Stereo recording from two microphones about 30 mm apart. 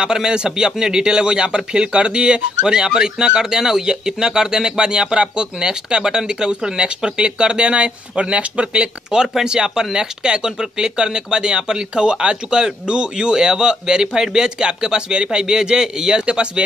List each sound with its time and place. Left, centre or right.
0.0 s a man's voice: right
9.4 s a man's voice: right